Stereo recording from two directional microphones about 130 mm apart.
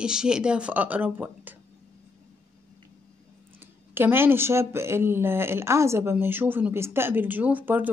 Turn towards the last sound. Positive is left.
turn(degrees=-15)  # may be behind; listen again after turning